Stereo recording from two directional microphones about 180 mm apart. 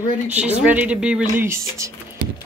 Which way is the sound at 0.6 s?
10° right (ahead or behind).